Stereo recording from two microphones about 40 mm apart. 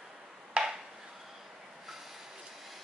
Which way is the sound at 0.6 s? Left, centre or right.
Right.